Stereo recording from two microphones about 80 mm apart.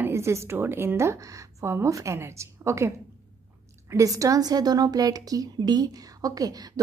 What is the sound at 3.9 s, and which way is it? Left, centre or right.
A woman's voice, right.